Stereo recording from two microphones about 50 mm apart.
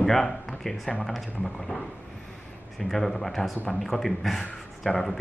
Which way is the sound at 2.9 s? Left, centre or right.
Centre.